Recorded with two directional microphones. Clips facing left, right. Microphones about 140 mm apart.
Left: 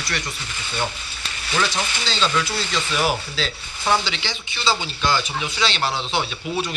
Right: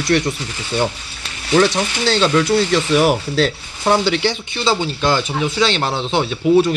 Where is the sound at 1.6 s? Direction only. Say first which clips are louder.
Right 7 dB; 65° right (ahead or behind).